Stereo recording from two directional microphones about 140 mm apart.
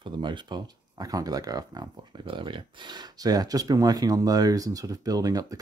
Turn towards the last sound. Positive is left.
turn(degrees=-25)  # may be behind; listen again after turning